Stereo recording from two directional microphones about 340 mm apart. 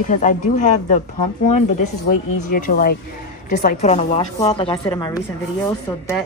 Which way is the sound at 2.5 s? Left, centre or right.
Left.